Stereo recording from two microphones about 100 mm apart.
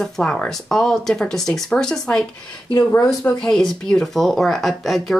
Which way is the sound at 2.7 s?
35° left (ahead or behind).